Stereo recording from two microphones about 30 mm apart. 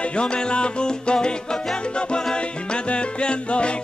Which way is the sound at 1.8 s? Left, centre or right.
Left.